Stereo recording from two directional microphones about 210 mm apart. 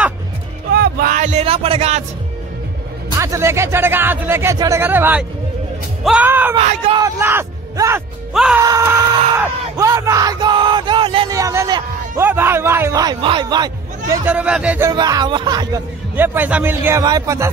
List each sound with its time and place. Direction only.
0.7 s a sound: 45° right (ahead or behind); by 2.0 s 30° right (ahead or behind)
3.2 s speech: 15° right (ahead or behind)
6.5 s speech: 30° right (ahead or behind)
7.0 s speech: 10° right (ahead or behind)
8.3 s music: centre (ahead or behind)
8.5 s speech: 15° right (ahead or behind)
14.9 s speech: 20° right (ahead or behind)
16.2 s speech: 5° right (ahead or behind)